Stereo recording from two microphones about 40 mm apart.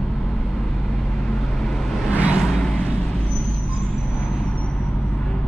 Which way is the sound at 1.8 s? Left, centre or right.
Centre.